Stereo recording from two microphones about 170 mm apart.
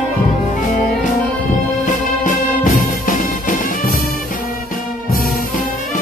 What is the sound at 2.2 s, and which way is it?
Music, 50° left (ahead or behind).